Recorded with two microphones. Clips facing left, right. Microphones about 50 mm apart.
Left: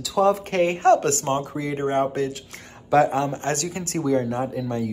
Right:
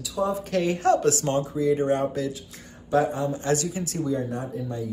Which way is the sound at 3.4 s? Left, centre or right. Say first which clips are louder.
Right 1 dB; left.